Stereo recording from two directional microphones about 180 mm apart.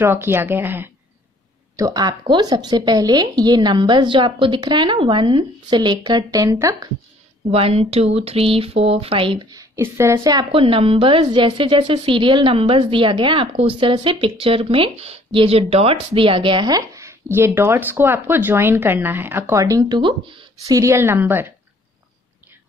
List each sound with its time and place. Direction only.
0.0 s a woman's voice: 15° right (ahead or behind)
7.5 s speech: 35° right (ahead or behind); by 10.4 s 15° right (ahead or behind)
10.5 s a woman's voice: 30° right (ahead or behind); by 21.5 s 10° right (ahead or behind)